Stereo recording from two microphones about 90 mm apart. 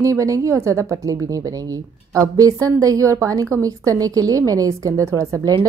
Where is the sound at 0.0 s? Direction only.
35° right (ahead or behind).